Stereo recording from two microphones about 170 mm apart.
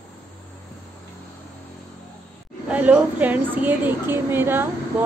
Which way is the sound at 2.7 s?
10° right (ahead or behind).